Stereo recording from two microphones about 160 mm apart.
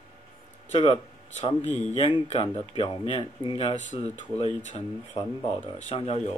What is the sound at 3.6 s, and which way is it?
Speech, 50° left (ahead or behind).